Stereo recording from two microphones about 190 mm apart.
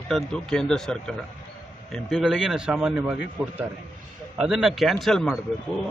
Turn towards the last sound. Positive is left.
turn(degrees=0)  # may be behind; listen again after turning